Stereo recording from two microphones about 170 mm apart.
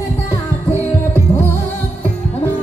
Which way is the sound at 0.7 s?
15° left (ahead or behind).